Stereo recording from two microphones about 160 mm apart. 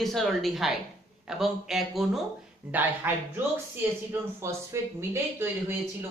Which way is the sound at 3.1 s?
10° right (ahead or behind).